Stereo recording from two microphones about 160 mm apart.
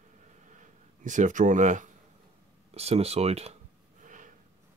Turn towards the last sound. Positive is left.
turn(degrees=-50)  # may be behind; listen again after turning